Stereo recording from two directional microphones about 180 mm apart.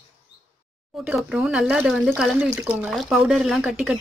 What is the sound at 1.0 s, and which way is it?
Speech, 5° right (ahead or behind).